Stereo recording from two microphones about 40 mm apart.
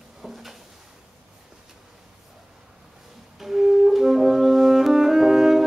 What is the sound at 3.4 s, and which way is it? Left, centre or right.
Music, centre.